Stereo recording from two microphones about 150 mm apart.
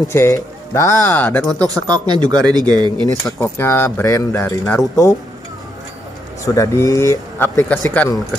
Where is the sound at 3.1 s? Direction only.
15° left (ahead or behind).